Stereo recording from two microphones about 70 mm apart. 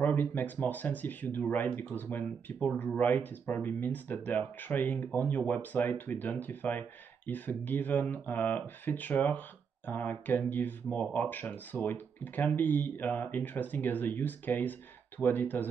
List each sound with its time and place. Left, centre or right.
0.0 s speech: left